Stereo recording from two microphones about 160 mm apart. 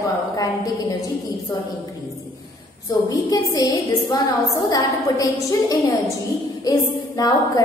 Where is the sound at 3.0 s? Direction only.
20° left (ahead or behind).